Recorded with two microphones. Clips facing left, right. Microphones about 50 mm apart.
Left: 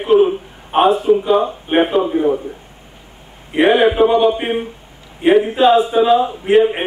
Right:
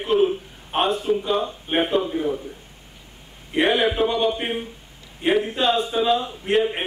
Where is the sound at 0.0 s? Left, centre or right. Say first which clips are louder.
Left 7 dB; centre.